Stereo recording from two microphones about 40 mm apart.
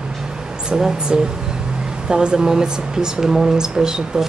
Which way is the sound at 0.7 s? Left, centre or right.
Centre.